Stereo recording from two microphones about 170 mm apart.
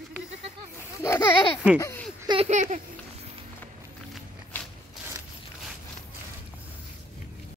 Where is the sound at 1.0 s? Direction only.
15° left (ahead or behind).